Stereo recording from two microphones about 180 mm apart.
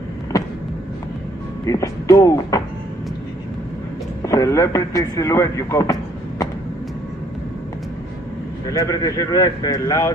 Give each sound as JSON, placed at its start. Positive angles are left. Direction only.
{"t": 1.7, "sound": "speech", "side_deg": 20}
{"t": 4.2, "sound": "speech", "side_deg": 20}
{"t": 8.6, "sound": "speech", "side_deg": 20}